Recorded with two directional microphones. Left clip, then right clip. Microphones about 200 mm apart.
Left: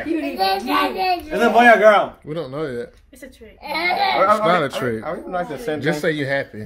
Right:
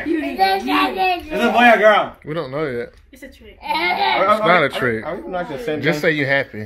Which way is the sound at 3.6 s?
20° left (ahead or behind).